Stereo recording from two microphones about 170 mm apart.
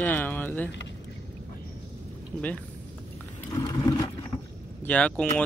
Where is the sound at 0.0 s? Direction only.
10° left (ahead or behind).